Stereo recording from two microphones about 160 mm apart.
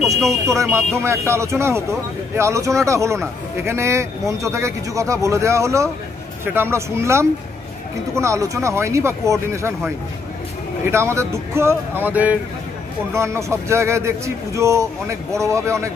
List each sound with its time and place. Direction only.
0.2 s speech: centre (ahead or behind)
0.6 s speech: 15° right (ahead or behind)
10.9 s speech: 15° right (ahead or behind)